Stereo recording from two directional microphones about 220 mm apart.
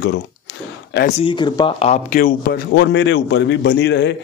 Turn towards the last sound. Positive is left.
turn(degrees=50)  # may be behind; listen again after turning